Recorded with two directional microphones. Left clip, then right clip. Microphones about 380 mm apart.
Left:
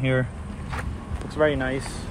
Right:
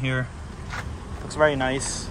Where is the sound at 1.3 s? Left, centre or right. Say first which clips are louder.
Right 2 dB; centre.